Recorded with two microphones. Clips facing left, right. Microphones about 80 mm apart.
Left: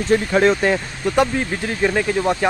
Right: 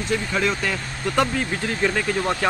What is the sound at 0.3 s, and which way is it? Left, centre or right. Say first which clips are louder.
Speech: left 9 dB; left.